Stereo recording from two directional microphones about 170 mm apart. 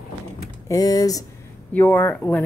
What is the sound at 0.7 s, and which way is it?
Speech, 20° left (ahead or behind).